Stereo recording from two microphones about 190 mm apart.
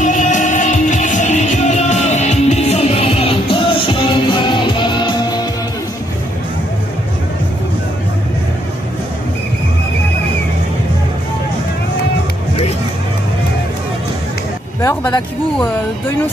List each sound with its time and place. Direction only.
0.0 s music: 40° left (ahead or behind); by 5.5 s 20° left (ahead or behind)